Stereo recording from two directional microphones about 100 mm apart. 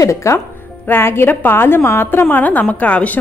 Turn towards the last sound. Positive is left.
turn(degrees=15)  # may be behind; listen again after turning